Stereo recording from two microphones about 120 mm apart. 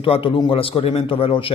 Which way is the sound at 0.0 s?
50° left (ahead or behind).